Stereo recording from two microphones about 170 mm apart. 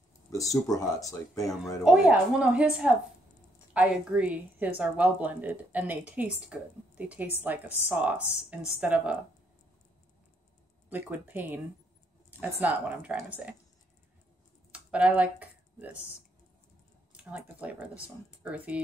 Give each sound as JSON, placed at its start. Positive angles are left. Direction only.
{"t": 0.3, "sound": "speech", "side_deg": 20}
{"t": 1.9, "sound": "a woman's voice", "side_deg": -5}
{"t": 10.9, "sound": "a woman's voice", "side_deg": -10}
{"t": 14.7, "sound": "a sound", "side_deg": -5}
{"t": 17.2, "sound": "a woman's voice", "side_deg": -10}